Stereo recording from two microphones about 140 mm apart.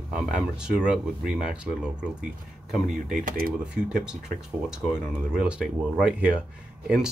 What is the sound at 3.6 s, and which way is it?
Speech, 5° right (ahead or behind).